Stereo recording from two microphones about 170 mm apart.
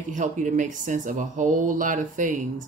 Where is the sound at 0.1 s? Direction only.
45° right (ahead or behind).